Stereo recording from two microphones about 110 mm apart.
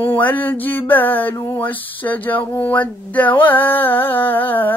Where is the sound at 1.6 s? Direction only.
15° left (ahead or behind).